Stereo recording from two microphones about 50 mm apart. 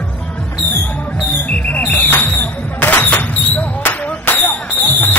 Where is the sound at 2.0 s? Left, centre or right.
Left.